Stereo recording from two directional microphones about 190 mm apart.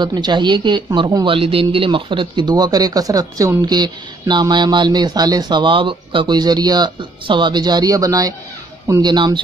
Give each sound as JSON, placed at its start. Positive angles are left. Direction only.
{"t": 0.0, "sound": "speech", "side_deg": -25}